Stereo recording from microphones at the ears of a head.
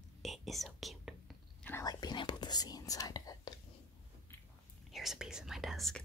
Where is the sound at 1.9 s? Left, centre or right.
Left.